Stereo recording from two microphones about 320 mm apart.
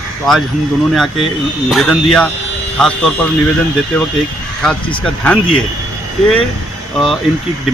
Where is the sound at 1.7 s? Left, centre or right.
Centre.